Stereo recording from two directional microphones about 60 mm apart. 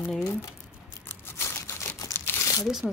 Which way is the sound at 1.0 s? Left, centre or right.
Left.